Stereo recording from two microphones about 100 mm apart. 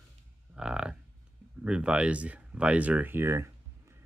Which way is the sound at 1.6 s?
10° right (ahead or behind).